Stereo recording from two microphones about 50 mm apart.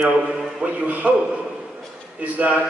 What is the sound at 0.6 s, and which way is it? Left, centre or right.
Speech, right.